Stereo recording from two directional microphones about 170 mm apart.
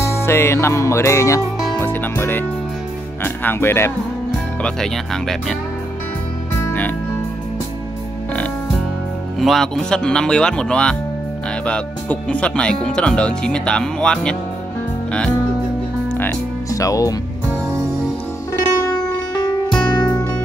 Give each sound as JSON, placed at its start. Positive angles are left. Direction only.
{"t": 0.0, "sound": "music", "side_deg": 15}
{"t": 1.8, "sound": "speech", "side_deg": 10}
{"t": 3.4, "sound": "speech", "side_deg": 15}
{"t": 4.6, "sound": "speech", "side_deg": 5}
{"t": 9.4, "sound": "speech", "side_deg": 0}
{"t": 16.1, "sound": "music", "side_deg": 10}
{"t": 16.7, "sound": "speech", "side_deg": 20}
{"t": 18.9, "sound": "music", "side_deg": 25}